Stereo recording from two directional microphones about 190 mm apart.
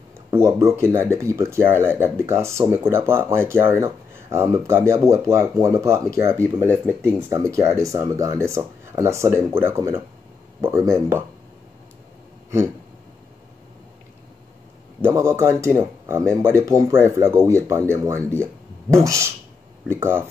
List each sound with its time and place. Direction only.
0.3 s speech: 15° right (ahead or behind)
15.0 s speech: 10° right (ahead or behind)